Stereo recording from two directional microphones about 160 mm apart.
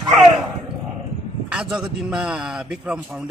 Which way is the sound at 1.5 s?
5° right (ahead or behind).